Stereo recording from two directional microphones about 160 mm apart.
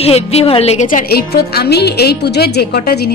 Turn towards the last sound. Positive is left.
turn(degrees=85)